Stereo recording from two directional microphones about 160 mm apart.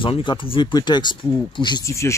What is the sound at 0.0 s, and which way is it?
Speech, 30° left (ahead or behind).